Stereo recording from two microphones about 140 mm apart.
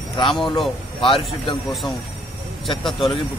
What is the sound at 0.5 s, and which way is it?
Speech, centre (ahead or behind).